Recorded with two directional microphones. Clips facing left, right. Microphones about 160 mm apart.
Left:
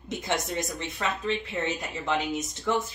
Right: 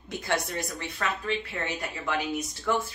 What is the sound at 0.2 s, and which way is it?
Speech, 20° left (ahead or behind).